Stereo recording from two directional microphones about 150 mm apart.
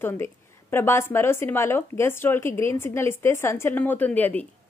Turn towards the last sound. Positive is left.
turn(degrees=10)  # may be behind; listen again after turning